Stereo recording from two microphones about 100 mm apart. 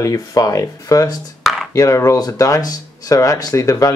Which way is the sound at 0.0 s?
35° left (ahead or behind).